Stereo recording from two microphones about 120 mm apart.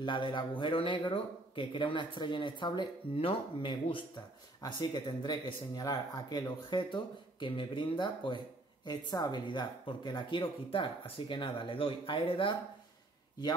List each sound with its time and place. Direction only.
0.0 s speech: 40° left (ahead or behind)